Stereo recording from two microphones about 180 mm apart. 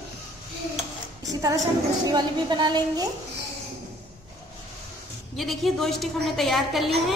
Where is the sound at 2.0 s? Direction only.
25° right (ahead or behind).